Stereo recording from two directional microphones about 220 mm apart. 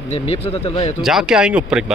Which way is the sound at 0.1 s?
25° left (ahead or behind).